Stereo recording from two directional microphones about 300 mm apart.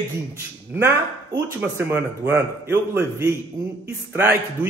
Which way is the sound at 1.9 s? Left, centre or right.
Centre.